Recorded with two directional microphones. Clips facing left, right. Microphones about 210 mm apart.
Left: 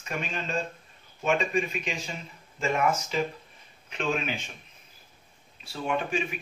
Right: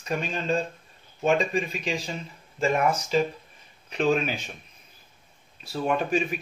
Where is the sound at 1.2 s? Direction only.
35° right (ahead or behind).